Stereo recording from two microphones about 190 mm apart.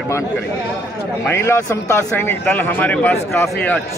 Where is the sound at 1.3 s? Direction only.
15° left (ahead or behind).